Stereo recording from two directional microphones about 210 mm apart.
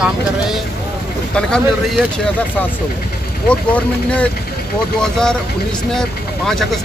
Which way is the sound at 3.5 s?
5° left (ahead or behind).